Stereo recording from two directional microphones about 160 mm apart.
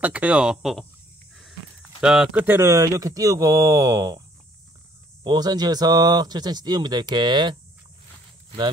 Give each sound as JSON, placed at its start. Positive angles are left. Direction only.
{"t": 0.0, "sound": "speech", "side_deg": -10}
{"t": 5.2, "sound": "speech", "side_deg": -25}